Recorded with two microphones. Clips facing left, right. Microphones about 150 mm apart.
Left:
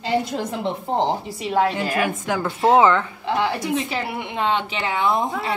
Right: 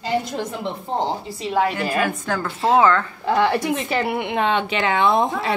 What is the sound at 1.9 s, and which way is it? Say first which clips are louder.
A woman's voice: even; 20° left (ahead or behind).